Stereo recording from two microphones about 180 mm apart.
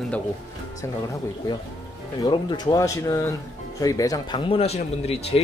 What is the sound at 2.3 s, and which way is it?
Speech, 25° left (ahead or behind).